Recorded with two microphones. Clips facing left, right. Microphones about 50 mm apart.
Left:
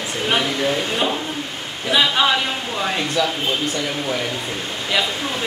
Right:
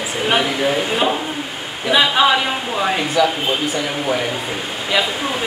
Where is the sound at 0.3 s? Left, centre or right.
Centre.